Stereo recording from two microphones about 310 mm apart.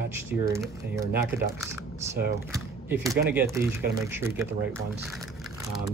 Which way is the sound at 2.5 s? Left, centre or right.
Centre.